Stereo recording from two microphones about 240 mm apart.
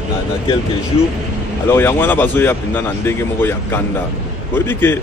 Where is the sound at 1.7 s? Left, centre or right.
Centre.